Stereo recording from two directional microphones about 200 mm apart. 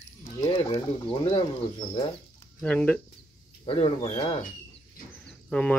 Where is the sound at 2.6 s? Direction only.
5° left (ahead or behind).